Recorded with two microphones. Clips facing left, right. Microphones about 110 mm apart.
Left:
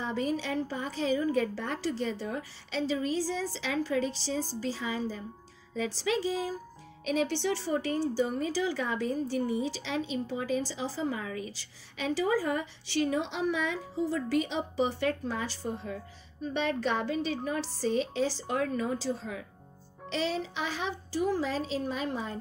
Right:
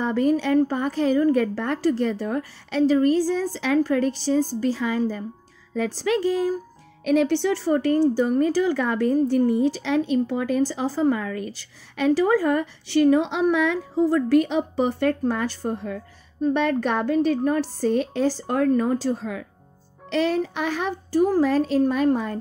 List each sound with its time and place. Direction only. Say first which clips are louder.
0.0 s speech: right 10 dB; 60° right (ahead or behind)